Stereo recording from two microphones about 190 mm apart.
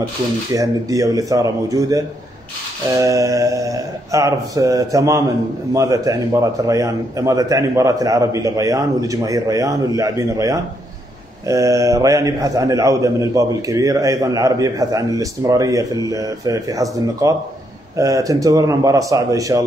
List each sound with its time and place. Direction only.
0.5 s a man's voice: 20° right (ahead or behind)